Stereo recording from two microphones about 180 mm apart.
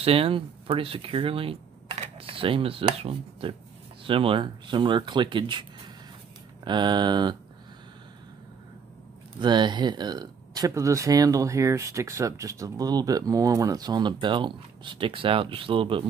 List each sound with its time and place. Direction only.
0.0 s speech: 30° right (ahead or behind)
9.4 s speech: 25° right (ahead or behind)